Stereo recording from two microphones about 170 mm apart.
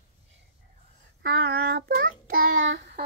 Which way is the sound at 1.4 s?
70° right (ahead or behind).